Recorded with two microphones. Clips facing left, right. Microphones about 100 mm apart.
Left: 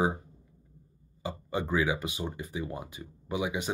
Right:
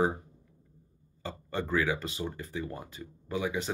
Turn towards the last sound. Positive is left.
turn(degrees=15)  # may be behind; listen again after turning